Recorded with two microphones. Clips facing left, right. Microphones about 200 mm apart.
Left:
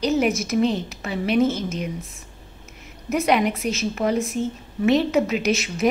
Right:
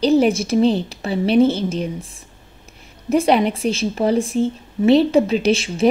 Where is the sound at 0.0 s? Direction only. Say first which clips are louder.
Right 6 dB; 30° right (ahead or behind).